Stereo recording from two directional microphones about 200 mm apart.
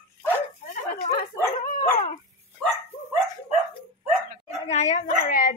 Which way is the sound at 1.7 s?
35° left (ahead or behind).